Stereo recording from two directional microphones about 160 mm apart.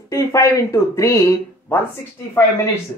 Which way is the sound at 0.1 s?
20° left (ahead or behind).